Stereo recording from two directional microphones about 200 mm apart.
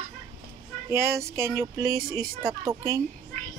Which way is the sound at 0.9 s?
10° right (ahead or behind).